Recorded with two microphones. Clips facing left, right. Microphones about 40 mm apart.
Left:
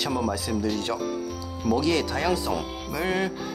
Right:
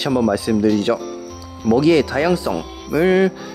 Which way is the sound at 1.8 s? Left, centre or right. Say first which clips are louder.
Right 11 dB; centre.